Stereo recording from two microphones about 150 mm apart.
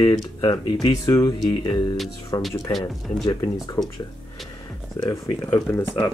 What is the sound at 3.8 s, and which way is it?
Speech, 25° left (ahead or behind).